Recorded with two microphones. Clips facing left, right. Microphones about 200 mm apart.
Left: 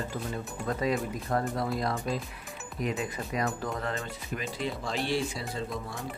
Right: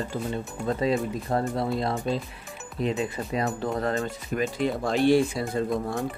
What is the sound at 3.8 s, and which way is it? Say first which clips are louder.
Speech: right 7 dB; 40° right (ahead or behind).